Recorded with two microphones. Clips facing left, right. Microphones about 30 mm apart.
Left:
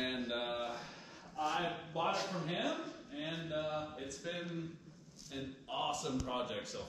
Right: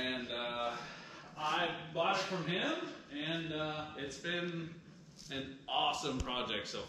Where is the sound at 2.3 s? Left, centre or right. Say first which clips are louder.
Right 2 dB; right.